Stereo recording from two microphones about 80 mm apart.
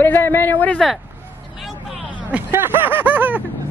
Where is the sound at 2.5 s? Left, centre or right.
Right.